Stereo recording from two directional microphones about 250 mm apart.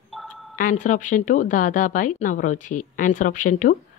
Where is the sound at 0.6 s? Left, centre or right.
Left.